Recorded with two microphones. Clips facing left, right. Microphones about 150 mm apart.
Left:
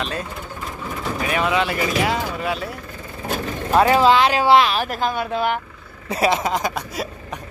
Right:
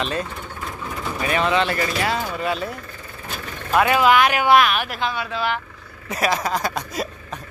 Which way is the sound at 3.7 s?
30° left (ahead or behind).